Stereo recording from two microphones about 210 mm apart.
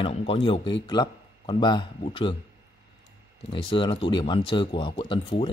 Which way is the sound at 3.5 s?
25° left (ahead or behind).